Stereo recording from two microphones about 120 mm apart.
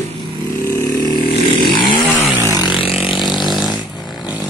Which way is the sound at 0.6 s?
25° left (ahead or behind).